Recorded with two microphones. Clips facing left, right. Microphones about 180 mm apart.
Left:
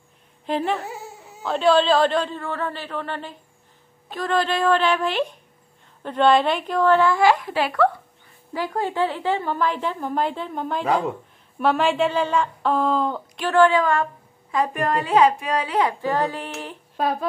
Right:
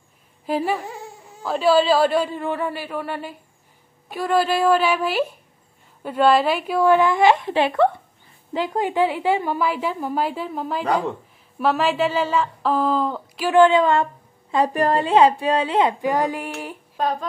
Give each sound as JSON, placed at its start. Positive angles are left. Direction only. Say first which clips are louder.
{"t": 0.5, "sound": "a woman's voice", "louder": "right 1 dB", "side_deg": -5}
{"t": 0.8, "sound": "baby cry", "louder": "even", "side_deg": 5}
{"t": 1.4, "sound": "a woman's voice", "louder": "right 1 dB", "side_deg": -5}
{"t": 13.5, "sound": "a woman's voice", "louder": "right 3 dB", "side_deg": -20}
{"t": 16.0, "sound": "a woman's voice", "louder": "right 2 dB", "side_deg": -15}
{"t": 16.9, "sound": "speech", "louder": "left 1 dB", "side_deg": 10}